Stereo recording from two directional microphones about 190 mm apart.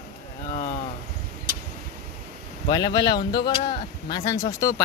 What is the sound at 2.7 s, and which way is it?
Speech, 20° left (ahead or behind).